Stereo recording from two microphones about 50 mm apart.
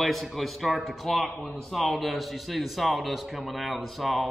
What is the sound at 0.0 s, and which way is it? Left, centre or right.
Speech, centre.